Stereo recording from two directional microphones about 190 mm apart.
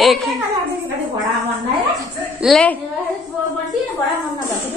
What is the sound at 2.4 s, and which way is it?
Speech, 5° left (ahead or behind).